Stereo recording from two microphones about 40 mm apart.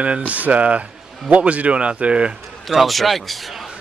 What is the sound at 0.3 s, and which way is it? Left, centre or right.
Speech, right.